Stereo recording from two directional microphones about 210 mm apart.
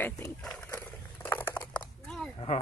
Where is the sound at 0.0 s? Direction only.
5° left (ahead or behind).